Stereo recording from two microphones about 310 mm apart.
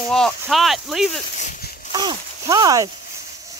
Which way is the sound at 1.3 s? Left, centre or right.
Left.